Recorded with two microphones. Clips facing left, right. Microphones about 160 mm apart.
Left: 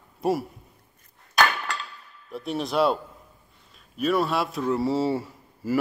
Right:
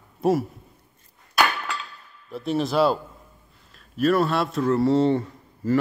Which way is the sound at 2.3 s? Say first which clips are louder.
Right 4 dB; centre (ahead or behind).